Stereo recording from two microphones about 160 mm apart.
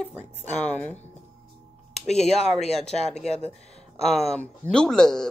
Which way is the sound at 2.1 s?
40° left (ahead or behind).